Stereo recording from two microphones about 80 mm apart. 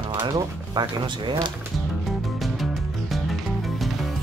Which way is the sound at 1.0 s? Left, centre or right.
Right.